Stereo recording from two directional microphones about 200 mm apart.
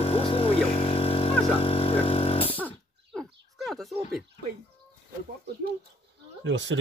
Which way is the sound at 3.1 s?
Centre (ahead or behind).